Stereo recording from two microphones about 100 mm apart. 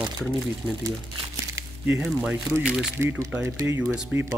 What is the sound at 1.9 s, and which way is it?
Speech, 5° right (ahead or behind).